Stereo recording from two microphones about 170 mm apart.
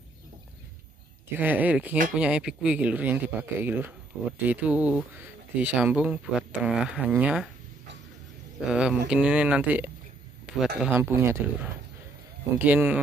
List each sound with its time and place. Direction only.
1.4 s speech: 10° right (ahead or behind)
8.5 s speech: 5° right (ahead or behind)